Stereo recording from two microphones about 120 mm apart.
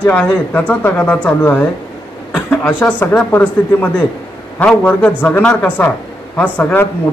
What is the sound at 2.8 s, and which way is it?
A man's voice, 15° left (ahead or behind).